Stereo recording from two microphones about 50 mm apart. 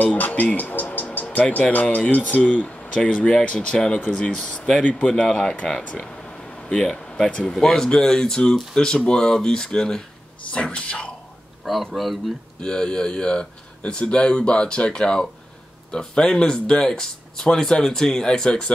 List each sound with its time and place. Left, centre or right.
0.0 s music: left
1.4 s speech: left
1.7 s speech: left
2.6 s speech: centre
4.4 s speech: centre
5.9 s speech: left
6.1 s speech: centre
11.6 s speech: centre
12.6 s speech: centre